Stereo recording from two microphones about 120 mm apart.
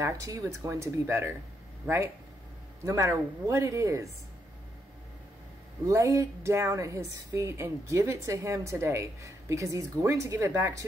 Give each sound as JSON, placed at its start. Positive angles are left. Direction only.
{"t": 0.0, "sound": "speech", "side_deg": -25}
{"t": 2.8, "sound": "speech", "side_deg": -25}
{"t": 5.9, "sound": "speech", "side_deg": -25}